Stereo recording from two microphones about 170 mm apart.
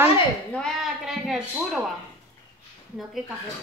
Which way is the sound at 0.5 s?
Centre (ahead or behind).